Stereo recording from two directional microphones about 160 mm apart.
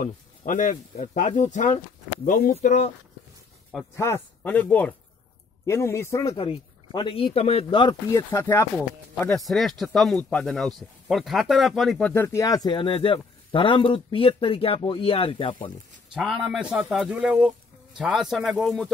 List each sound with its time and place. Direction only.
0.0 s speech: 55° left (ahead or behind)
2.2 s speech: 60° left (ahead or behind)
2.5 s speech: 45° left (ahead or behind)
3.9 s speech: 15° left (ahead or behind)
6.3 s speech: 35° left (ahead or behind)
8.1 s speech: 15° left (ahead or behind)
8.7 s speech: 5° left (ahead or behind)
12.1 s speech: 15° left (ahead or behind); by 15.7 s 35° left (ahead or behind)
16.1 s speech: centre (ahead or behind)